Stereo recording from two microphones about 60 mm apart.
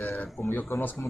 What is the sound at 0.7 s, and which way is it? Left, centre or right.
Speech, left.